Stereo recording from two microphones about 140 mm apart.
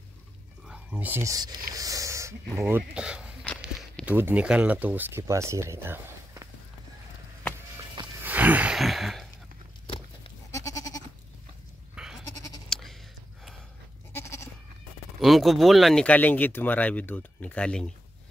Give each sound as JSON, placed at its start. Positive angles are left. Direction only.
{"t": 0.7, "sound": "speech", "side_deg": -10}
{"t": 8.2, "sound": "a sound", "side_deg": -10}
{"t": 8.7, "sound": "throat clearing", "side_deg": 0}
{"t": 9.8, "sound": "a sound", "side_deg": 40}
{"t": 10.5, "sound": "goat", "side_deg": 25}
{"t": 11.9, "sound": "goat", "side_deg": -5}
{"t": 12.3, "sound": "goat", "side_deg": 25}
{"t": 12.6, "sound": "bleat", "side_deg": 5}
{"t": 14.1, "sound": "goat", "side_deg": 20}
{"t": 15.1, "sound": "speech", "side_deg": 0}